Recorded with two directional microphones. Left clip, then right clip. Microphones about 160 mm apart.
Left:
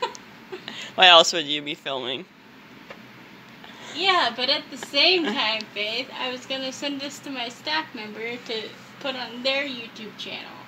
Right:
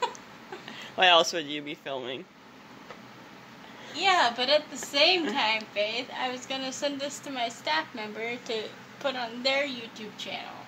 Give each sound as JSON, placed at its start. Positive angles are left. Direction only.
{"t": 0.7, "sound": "speech", "side_deg": 5}
{"t": 4.0, "sound": "a woman's voice", "side_deg": -25}